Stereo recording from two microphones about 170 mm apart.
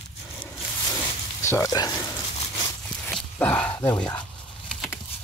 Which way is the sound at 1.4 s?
20° left (ahead or behind).